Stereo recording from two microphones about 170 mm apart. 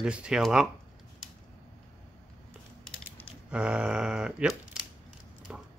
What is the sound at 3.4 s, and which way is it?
Speech, 5° right (ahead or behind).